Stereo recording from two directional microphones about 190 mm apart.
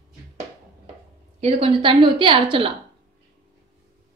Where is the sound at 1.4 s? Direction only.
30° right (ahead or behind).